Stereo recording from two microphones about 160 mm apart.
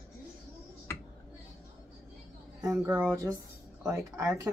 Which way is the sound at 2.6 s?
20° right (ahead or behind).